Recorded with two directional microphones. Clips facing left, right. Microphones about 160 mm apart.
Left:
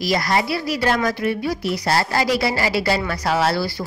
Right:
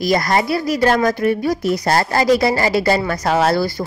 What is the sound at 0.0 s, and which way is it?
A woman's voice, 50° right (ahead or behind).